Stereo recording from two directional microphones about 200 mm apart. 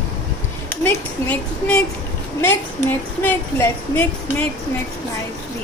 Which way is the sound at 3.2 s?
10° left (ahead or behind).